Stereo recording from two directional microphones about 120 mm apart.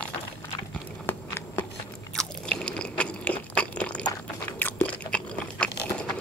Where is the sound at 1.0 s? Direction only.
20° left (ahead or behind).